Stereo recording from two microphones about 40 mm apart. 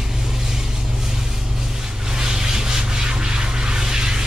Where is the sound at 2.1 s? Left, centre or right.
Centre.